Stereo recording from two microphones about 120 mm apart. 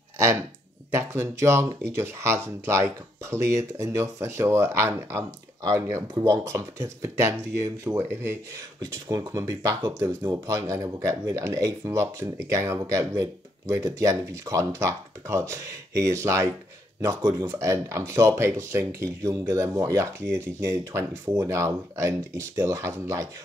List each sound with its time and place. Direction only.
0.9 s speech: 25° right (ahead or behind)